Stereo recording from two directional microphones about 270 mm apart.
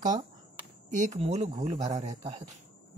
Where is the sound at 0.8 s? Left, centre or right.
Right.